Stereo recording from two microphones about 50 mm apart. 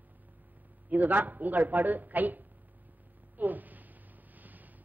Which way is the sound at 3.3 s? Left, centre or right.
Right.